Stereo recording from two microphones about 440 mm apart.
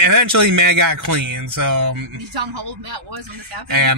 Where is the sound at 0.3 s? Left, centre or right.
Right.